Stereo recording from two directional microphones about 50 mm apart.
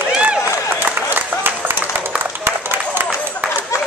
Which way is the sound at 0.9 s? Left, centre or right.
Right.